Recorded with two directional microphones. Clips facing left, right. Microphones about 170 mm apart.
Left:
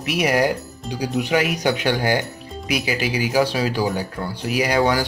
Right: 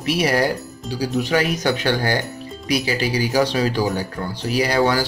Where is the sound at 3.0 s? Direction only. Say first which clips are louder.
Right 1 dB; 35° right (ahead or behind).